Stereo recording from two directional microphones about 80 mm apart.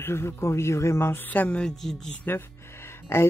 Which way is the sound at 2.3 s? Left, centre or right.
Left.